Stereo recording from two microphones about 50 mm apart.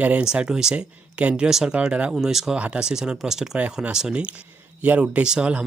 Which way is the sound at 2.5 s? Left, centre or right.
Right.